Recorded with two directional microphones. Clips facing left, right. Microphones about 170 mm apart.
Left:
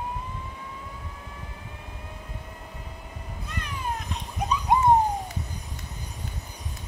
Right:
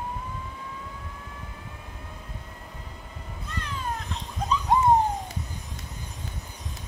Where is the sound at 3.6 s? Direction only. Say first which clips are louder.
Even; 15° left (ahead or behind).